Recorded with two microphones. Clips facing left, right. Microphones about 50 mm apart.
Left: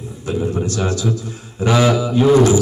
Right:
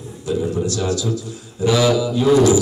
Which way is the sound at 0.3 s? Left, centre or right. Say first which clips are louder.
Even; left.